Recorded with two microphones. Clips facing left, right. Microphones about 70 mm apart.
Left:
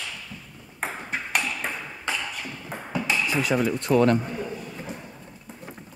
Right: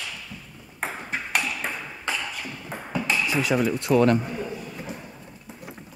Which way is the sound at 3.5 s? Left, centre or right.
Left.